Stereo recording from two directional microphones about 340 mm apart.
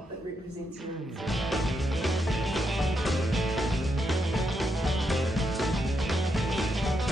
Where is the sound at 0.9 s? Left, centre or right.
Centre.